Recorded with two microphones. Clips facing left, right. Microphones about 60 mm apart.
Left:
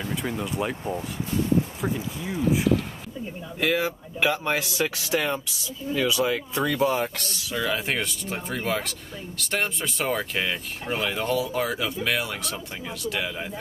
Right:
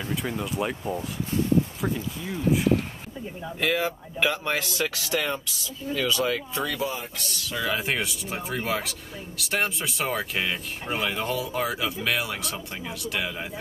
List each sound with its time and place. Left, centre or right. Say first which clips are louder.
0.1 s speech: right 1 dB; centre
2.0 s speech: left 2 dB; centre
3.5 s speech: left 1 dB; centre
6.9 s speech: left 8 dB; left
7.5 s speech: left 1 dB; centre